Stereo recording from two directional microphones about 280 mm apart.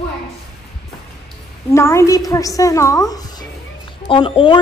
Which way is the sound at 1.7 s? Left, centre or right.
Centre.